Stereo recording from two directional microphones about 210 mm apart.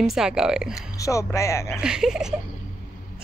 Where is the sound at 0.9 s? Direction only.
15° left (ahead or behind).